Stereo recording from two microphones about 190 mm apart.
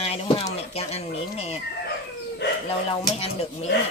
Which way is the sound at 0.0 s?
30° left (ahead or behind).